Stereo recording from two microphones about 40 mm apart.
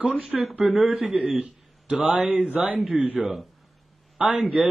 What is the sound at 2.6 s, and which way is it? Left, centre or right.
Speech, centre.